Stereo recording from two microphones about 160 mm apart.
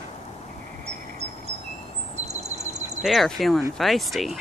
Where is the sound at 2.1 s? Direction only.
45° right (ahead or behind).